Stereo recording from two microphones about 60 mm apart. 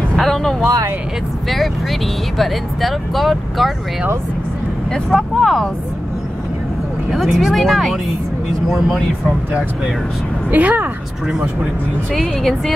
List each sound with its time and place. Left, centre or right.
0.1 s vehicle: centre
1.5 s speech: centre
5.1 s speech: centre
7.1 s speech: centre
10.5 s speech: right
12.1 s speech: centre